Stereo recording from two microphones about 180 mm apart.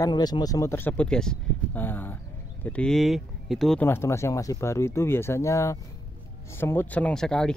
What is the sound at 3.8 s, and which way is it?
Speech, 15° left (ahead or behind).